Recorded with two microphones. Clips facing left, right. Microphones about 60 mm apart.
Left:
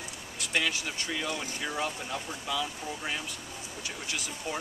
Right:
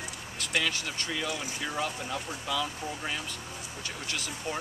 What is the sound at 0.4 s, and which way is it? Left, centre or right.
Speech, centre.